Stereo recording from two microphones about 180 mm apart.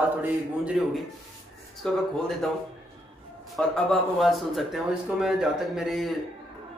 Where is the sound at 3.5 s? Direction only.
5° left (ahead or behind).